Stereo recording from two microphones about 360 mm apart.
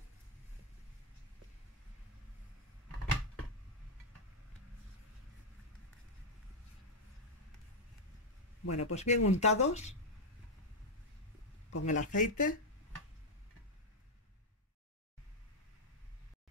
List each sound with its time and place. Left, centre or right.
8.6 s a man's voice: left
8.9 s speech: centre
11.7 s speech: left